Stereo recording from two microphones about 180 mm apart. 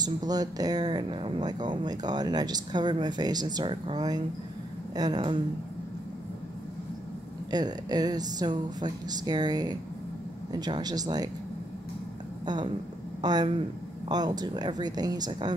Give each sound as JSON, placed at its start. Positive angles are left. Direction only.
{"t": 0.0, "sound": "speech", "side_deg": -20}
{"t": 7.5, "sound": "speech", "side_deg": -20}
{"t": 13.2, "sound": "speech", "side_deg": -20}